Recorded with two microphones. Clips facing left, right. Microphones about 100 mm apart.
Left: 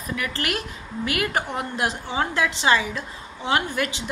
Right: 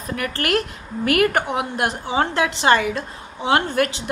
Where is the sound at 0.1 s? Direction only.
50° right (ahead or behind).